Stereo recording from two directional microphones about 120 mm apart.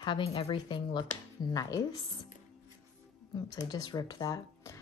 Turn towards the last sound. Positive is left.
turn(degrees=30)  # may be behind; listen again after turning